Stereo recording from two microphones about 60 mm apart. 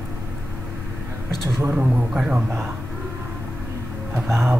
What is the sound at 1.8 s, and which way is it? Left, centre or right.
Speech, centre.